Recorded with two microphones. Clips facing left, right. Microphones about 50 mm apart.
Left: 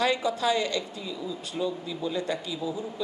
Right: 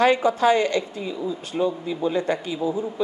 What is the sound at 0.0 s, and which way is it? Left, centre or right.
Speech, right.